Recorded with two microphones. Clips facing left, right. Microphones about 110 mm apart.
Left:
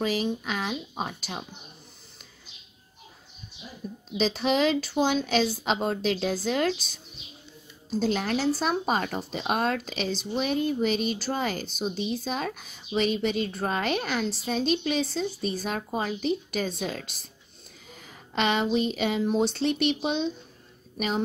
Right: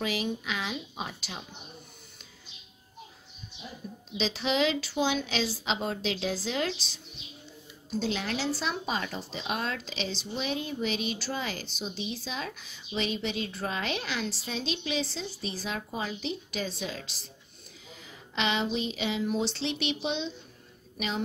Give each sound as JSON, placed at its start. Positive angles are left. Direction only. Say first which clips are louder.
{"t": 0.0, "sound": "a sound", "louder": "left 4 dB", "side_deg": 40}
{"t": 4.2, "sound": "speech", "louder": "left 4 dB", "side_deg": 45}
{"t": 8.0, "sound": "speech", "louder": "left 6 dB", "side_deg": 45}